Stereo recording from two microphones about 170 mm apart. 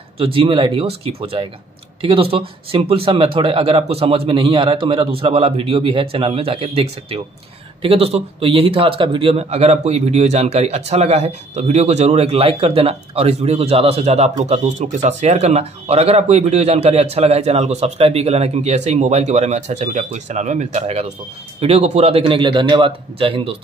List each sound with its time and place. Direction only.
0.2 s speech: 30° right (ahead or behind)